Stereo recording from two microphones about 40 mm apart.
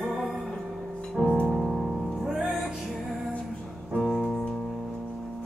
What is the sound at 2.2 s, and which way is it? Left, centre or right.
Music, centre.